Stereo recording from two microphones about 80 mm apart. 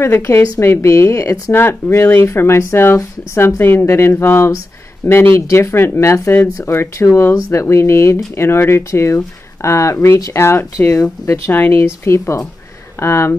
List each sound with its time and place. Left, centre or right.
0.0 s speech: left
10.4 s speech: left
10.9 s speech: left
11.4 s speech: left